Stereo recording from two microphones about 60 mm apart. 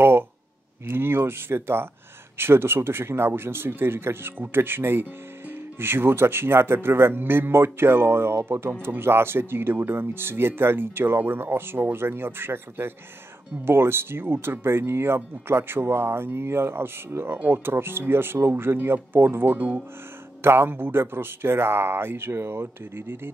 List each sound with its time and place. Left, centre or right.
0.8 s speech: right
19.5 s speech: right
20.4 s speech: right